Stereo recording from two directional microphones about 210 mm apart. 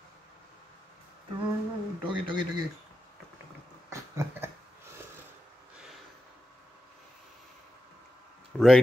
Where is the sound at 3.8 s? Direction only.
15° right (ahead or behind).